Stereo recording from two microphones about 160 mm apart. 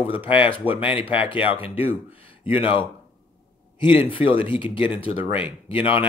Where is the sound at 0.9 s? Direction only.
35° left (ahead or behind).